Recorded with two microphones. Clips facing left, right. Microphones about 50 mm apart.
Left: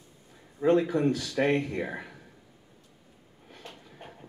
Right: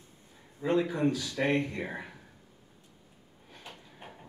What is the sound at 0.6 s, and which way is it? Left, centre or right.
Speech, left.